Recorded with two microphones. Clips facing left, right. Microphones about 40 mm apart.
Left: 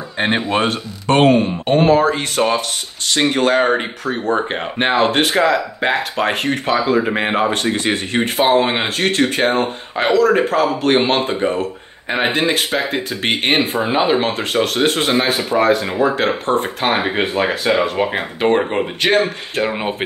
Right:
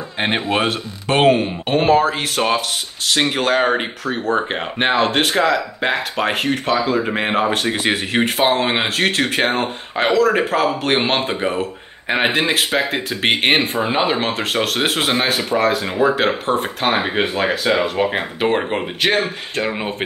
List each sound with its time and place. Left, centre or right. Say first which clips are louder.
0.2 s speech: left 2 dB; centre